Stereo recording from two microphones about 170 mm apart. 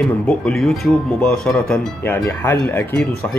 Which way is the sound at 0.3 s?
5° left (ahead or behind).